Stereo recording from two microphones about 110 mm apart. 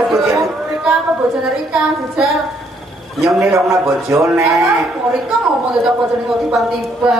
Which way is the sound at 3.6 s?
30° right (ahead or behind).